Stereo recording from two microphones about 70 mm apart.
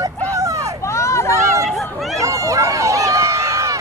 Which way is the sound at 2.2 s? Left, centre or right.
Right.